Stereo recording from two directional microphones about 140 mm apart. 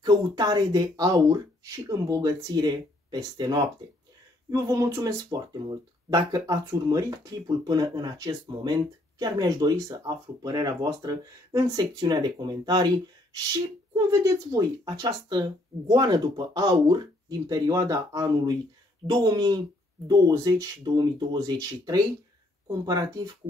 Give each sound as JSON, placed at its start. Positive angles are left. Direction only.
{"t": 0.0, "sound": "speech", "side_deg": -30}